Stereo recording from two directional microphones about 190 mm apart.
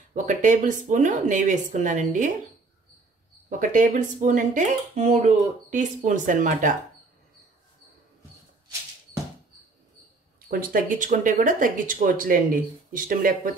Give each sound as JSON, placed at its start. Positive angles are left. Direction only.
{"t": 0.1, "sound": "speech", "side_deg": -40}
{"t": 3.4, "sound": "speech", "side_deg": -45}
{"t": 10.5, "sound": "speech", "side_deg": -45}